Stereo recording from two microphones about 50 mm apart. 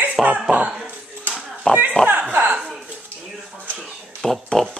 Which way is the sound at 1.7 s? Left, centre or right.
Centre.